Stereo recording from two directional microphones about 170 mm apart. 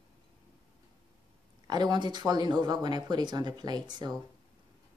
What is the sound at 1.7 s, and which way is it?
Speech, 25° right (ahead or behind).